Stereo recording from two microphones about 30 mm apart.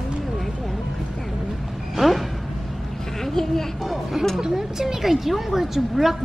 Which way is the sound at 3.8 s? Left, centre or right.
Centre.